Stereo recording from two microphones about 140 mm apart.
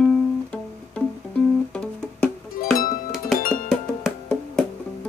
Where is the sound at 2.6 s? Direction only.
80° left.